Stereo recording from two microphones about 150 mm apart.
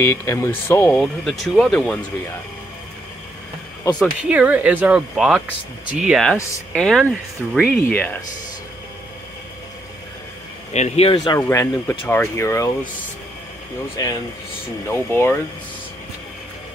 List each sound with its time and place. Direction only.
0.0 s speech: 20° left (ahead or behind)
0.9 s speech: centre (ahead or behind)
4.0 s speech: 10° right (ahead or behind)
6.7 s speech: 5° left (ahead or behind)
10.7 s speech: 45° left (ahead or behind)
11.3 s speech: 20° left (ahead or behind)
14.0 s speech: 25° left (ahead or behind)
14.9 s speech: 15° left (ahead or behind)